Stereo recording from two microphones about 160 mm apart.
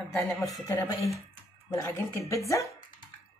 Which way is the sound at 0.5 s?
15° left (ahead or behind).